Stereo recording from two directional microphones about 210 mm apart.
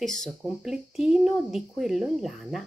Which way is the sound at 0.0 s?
Centre (ahead or behind).